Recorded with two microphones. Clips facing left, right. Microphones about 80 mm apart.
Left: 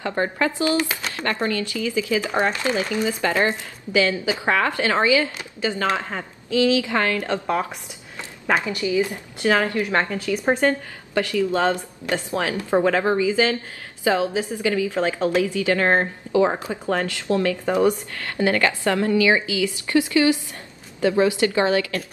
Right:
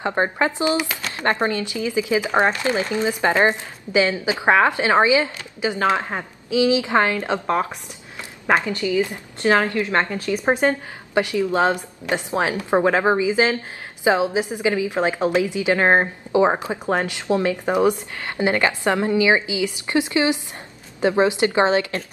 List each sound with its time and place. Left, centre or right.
0.0 s a woman's voice: right
8.6 s a woman's voice: centre
8.9 s a woman's voice: right
9.7 s a woman's voice: left
9.9 s a woman's voice: right